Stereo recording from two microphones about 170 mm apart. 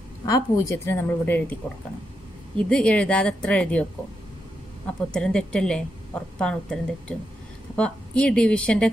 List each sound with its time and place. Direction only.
0.2 s a woman's voice: 20° left (ahead or behind)
4.8 s a woman's voice: 5° left (ahead or behind)